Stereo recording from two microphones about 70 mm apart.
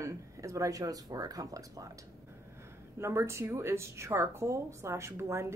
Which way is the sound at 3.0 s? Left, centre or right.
Right.